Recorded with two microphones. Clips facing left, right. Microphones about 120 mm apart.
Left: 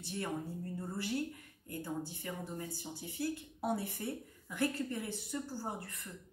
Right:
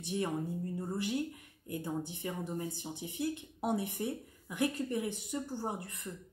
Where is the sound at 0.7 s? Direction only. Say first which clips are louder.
Right 2 dB; 15° right (ahead or behind).